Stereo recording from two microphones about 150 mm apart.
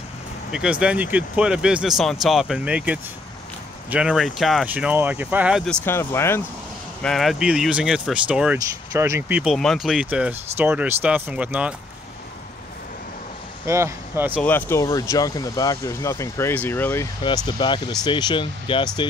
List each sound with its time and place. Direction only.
0.5 s speech: 5° right (ahead or behind)
5.9 s speech: 15° left (ahead or behind)
7.0 s speech: centre (ahead or behind)
8.5 s speech: 20° right (ahead or behind)
9.4 s speech: centre (ahead or behind)
13.7 s speech: 20° right (ahead or behind)
14.4 s speech: 15° left (ahead or behind)
17.5 s speech: 30° left (ahead or behind)